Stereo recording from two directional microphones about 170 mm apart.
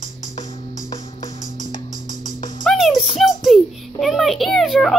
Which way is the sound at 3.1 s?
Centre (ahead or behind).